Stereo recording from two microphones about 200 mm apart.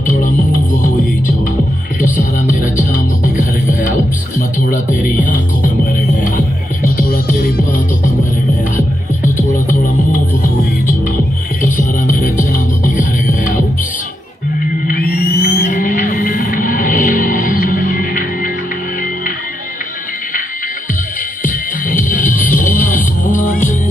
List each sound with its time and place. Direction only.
0.0 s music: 40° left (ahead or behind)
2.9 s music: 40° left (ahead or behind)
9.2 s music: 40° left (ahead or behind)
11.6 s music: 40° left (ahead or behind)
14.9 s music: 50° left (ahead or behind)
21.9 s music: 40° left (ahead or behind)